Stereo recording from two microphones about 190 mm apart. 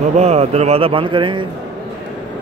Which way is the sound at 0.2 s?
35° right (ahead or behind).